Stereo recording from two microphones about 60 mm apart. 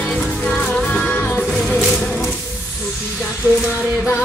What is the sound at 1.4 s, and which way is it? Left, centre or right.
Music, centre.